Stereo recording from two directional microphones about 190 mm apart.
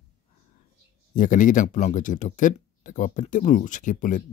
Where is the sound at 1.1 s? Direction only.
45° left (ahead or behind).